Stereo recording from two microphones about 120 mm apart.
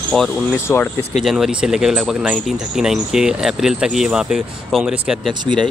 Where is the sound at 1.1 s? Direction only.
5° right (ahead or behind).